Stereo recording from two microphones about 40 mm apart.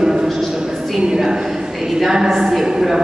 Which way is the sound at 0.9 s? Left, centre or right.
Centre.